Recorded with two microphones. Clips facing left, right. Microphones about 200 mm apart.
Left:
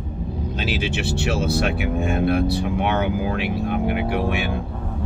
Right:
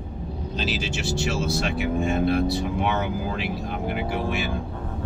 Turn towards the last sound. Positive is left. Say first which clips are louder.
# left 4 dB
turn(degrees=60)  # may be behind; listen again after turning